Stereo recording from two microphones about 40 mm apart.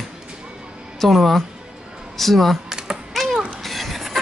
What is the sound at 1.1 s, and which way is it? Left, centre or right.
Speech, centre.